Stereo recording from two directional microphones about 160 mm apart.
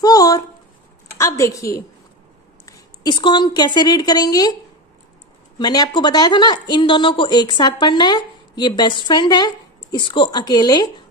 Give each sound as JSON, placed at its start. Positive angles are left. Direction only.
{"t": 0.0, "sound": "a sound", "side_deg": 25}
{"t": 1.1, "sound": "a woman's voice", "side_deg": 20}
{"t": 5.6, "sound": "a woman's voice", "side_deg": 25}